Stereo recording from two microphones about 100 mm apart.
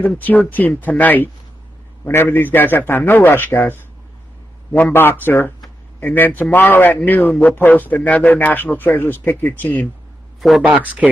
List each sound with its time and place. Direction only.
0.2 s a man's voice: 15° left (ahead or behind)
10.6 s a man's voice: 15° right (ahead or behind)